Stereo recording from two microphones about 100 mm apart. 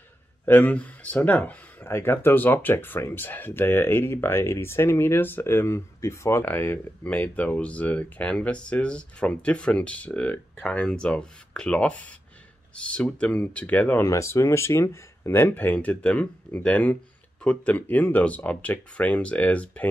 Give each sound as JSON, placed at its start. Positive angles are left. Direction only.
{"t": 0.5, "sound": "speech", "side_deg": 15}
{"t": 14.0, "sound": "speech", "side_deg": 30}